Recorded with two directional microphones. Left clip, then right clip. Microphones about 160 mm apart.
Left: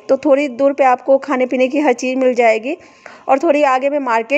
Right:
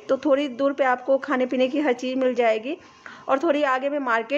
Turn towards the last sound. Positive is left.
turn(degrees=35)  # may be behind; listen again after turning